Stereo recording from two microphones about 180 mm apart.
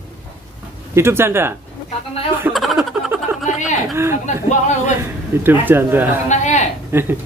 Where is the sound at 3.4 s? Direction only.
45° left (ahead or behind).